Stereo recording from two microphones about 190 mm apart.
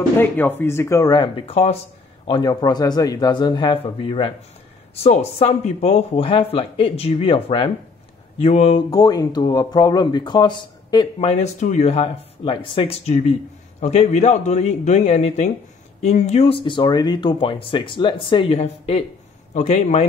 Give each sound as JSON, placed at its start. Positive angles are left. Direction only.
{"t": 0.2, "sound": "speech", "side_deg": 10}
{"t": 1.4, "sound": "speech", "side_deg": 35}
{"t": 2.2, "sound": "speech", "side_deg": 20}
{"t": 8.9, "sound": "speech", "side_deg": 20}
{"t": 11.1, "sound": "speech", "side_deg": 35}